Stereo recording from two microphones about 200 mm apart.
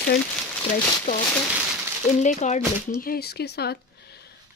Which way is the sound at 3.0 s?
50° left (ahead or behind).